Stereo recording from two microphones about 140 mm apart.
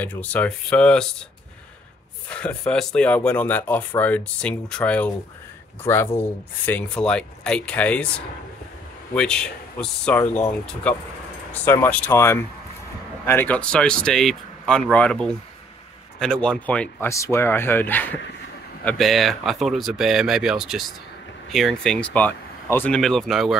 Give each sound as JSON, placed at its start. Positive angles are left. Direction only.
{"t": 0.0, "sound": "speech", "side_deg": 10}
{"t": 2.2, "sound": "speech", "side_deg": 10}
{"t": 9.1, "sound": "speech", "side_deg": 5}
{"t": 17.1, "sound": "speech", "side_deg": 20}
{"t": 18.9, "sound": "speech", "side_deg": 0}
{"t": 22.9, "sound": "speech", "side_deg": 5}